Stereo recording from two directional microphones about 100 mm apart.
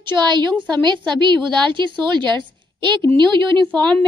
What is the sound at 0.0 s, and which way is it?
A woman's voice, 50° right (ahead or behind).